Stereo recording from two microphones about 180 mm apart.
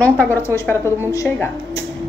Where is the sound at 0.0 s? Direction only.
10° left (ahead or behind).